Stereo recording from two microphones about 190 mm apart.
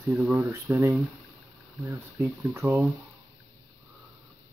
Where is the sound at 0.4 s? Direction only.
15° right (ahead or behind).